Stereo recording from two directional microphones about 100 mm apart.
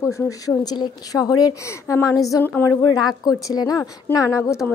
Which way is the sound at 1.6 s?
30° left (ahead or behind).